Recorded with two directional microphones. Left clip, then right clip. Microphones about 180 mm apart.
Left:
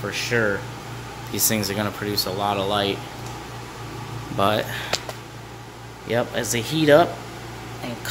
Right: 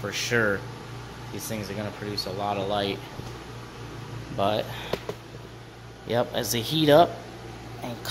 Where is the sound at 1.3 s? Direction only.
35° left (ahead or behind).